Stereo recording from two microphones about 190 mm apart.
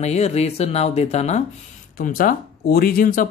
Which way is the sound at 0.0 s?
35° left (ahead or behind).